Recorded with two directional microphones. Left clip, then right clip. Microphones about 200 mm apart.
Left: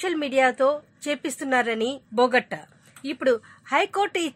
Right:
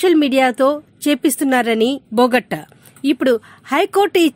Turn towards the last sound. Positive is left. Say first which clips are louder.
# right 10 dB
turn(degrees=-40)  # may be behind; listen again after turning